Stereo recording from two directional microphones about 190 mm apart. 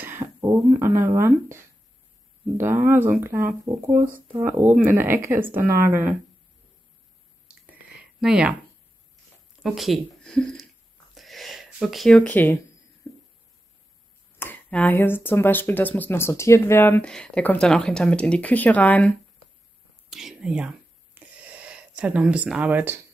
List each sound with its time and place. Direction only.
0.0 s speech: 10° right (ahead or behind)
7.6 s a sound: 5° right (ahead or behind)
9.6 s speech: centre (ahead or behind)
11.1 s a sound: centre (ahead or behind); by 13.2 s 15° left (ahead or behind)
14.4 s speech: 10° left (ahead or behind)
20.1 s whispering: centre (ahead or behind)